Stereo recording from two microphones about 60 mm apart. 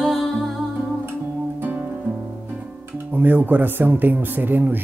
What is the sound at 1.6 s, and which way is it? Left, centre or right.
Music, right.